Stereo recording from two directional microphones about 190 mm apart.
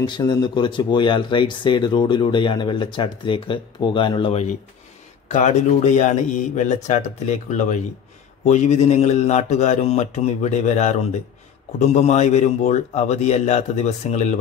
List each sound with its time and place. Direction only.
0.0 s speech: 25° left (ahead or behind)
5.3 s speech: 40° left (ahead or behind)